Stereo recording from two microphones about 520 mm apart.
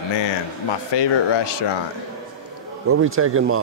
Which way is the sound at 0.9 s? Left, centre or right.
Left.